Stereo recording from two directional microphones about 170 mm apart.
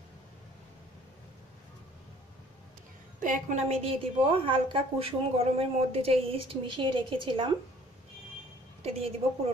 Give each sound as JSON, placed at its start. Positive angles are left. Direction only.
{"t": 3.2, "sound": "a woman's voice", "side_deg": -50}
{"t": 8.8, "sound": "a woman's voice", "side_deg": -35}